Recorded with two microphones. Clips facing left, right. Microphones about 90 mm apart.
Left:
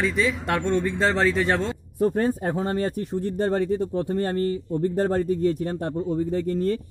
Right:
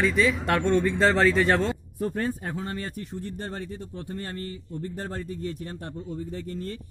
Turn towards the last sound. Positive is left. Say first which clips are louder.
# left 11 dB
turn(degrees=45)  # may be behind; listen again after turning